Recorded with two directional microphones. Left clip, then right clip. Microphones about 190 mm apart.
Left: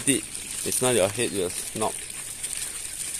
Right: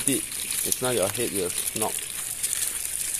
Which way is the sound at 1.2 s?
20° left (ahead or behind).